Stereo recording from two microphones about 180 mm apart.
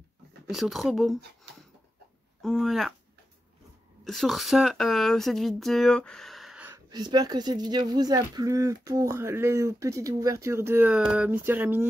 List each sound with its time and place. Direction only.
0.5 s speech: centre (ahead or behind)
2.4 s speech: centre (ahead or behind)
4.0 s speech: centre (ahead or behind)
6.9 s speech: 25° right (ahead or behind)